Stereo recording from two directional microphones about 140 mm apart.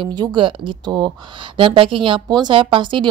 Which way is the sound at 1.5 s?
40° right (ahead or behind).